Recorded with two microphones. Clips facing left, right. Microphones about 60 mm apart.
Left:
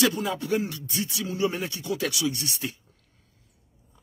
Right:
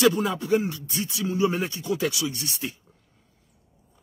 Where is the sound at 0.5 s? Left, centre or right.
Right.